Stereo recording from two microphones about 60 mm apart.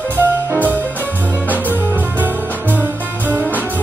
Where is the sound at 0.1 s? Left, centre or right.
Right.